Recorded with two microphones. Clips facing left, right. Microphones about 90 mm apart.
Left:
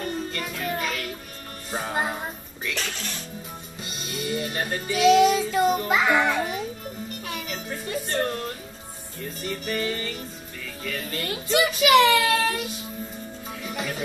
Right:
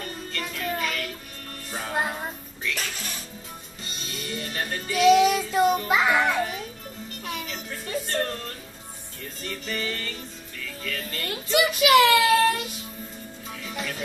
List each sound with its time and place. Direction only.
0.0 s music: 10° left (ahead or behind)
3.8 s music: 5° left (ahead or behind)
5.9 s a child's voice: centre (ahead or behind)
7.2 s music: centre (ahead or behind)
9.4 s music: 10° left (ahead or behind)
10.8 s a child's voice: 10° left (ahead or behind)
13.7 s music: 10° left (ahead or behind)